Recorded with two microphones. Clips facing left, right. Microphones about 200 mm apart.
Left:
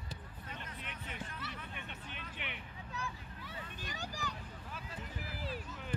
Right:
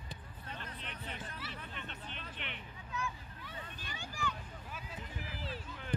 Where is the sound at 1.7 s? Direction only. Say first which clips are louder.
Right 1 dB; 10° left (ahead or behind).